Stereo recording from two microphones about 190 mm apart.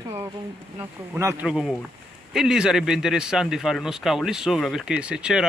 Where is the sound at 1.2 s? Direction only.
15° right (ahead or behind).